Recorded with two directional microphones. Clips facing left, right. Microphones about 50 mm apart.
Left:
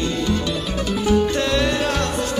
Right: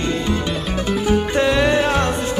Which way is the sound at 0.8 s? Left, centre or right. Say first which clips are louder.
Left 1 dB; right.